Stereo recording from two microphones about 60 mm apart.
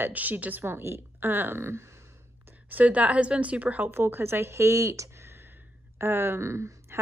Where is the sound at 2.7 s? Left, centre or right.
Right.